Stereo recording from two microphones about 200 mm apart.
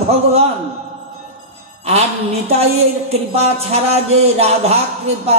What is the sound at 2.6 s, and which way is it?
Speech, 30° right (ahead or behind).